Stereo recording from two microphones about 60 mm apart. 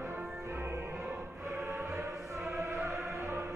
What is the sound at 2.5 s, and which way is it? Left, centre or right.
Choir, right.